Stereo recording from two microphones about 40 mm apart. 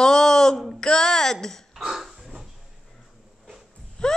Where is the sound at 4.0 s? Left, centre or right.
Centre.